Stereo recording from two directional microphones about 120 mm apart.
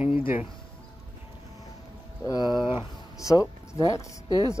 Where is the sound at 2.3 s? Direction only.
35° left (ahead or behind).